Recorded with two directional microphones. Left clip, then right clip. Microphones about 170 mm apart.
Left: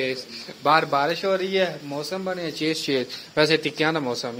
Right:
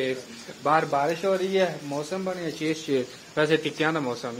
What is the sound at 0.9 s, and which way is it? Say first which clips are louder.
Speech: left 2 dB; 10° left (ahead or behind).